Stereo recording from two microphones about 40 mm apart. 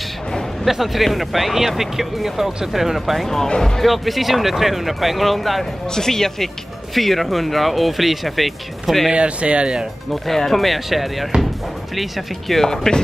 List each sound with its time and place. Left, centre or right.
0.7 s speech: centre
3.4 s speech: centre
3.8 s speech: centre
9.1 s speech: right
10.2 s speech: centre